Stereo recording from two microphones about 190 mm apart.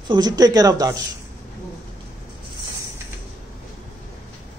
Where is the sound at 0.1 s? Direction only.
20° right (ahead or behind).